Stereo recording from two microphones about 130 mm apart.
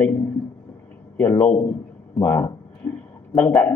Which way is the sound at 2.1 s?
15° left (ahead or behind).